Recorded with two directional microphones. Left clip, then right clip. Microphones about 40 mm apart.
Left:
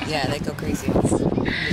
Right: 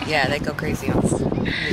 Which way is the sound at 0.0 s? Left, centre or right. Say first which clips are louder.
Right 4 dB; right.